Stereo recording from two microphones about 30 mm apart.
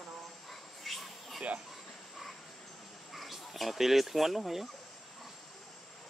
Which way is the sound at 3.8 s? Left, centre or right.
Centre.